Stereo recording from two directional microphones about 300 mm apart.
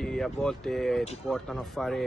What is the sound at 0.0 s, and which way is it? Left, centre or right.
Speech, centre.